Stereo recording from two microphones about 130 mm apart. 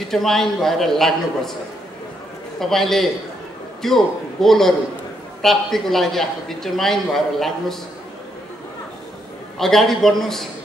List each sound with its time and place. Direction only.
0.1 s a man's voice: 5° left (ahead or behind)
2.6 s a man's voice: centre (ahead or behind)
9.6 s a man's voice: centre (ahead or behind)